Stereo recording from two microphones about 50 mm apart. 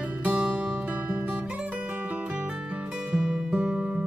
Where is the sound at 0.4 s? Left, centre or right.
Right.